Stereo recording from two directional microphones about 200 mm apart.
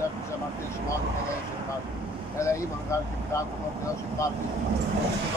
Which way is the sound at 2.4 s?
15° left (ahead or behind).